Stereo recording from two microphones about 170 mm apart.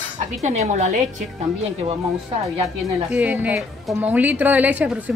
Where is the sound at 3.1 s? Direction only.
10° right (ahead or behind).